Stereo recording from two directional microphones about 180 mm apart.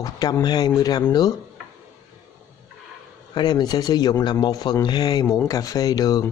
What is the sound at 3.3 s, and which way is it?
Speech, 25° left (ahead or behind).